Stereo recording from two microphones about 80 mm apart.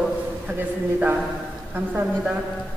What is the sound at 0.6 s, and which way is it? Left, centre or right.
A man's voice, right.